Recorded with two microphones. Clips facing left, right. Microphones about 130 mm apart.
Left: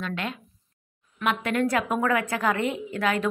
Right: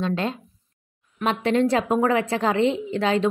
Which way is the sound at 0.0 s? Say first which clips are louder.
Right 6 dB; 30° right (ahead or behind).